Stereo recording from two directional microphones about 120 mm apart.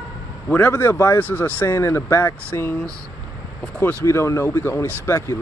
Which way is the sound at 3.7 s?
20° left (ahead or behind).